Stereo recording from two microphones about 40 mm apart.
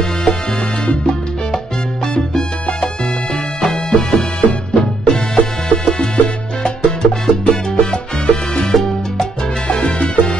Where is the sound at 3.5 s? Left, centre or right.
Centre.